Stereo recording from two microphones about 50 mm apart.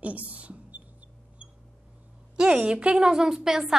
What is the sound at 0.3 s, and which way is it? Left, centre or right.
Speech, right.